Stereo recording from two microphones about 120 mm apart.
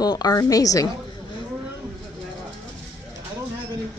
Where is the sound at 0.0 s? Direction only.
35° left (ahead or behind).